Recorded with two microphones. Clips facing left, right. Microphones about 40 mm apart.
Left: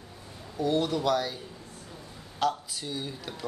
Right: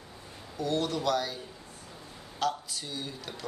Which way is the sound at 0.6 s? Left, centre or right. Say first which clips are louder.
Left 3 dB; centre.